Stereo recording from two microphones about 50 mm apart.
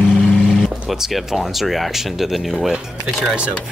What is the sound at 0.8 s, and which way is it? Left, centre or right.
Speech, centre.